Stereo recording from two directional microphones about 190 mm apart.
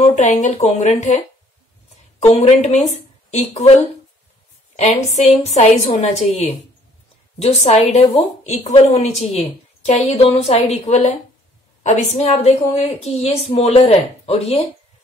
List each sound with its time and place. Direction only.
0.0 s a woman's voice: 40° left (ahead or behind)
2.2 s a woman's voice: 30° left (ahead or behind)
4.7 s a woman's voice: 35° left (ahead or behind)